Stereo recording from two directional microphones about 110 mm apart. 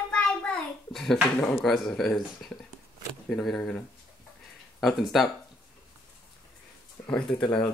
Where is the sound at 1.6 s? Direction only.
Centre (ahead or behind).